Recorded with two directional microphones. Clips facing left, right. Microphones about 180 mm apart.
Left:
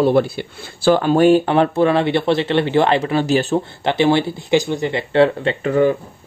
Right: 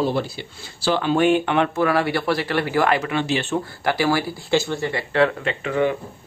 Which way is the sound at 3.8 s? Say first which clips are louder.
Left 5 dB; 25° left (ahead or behind).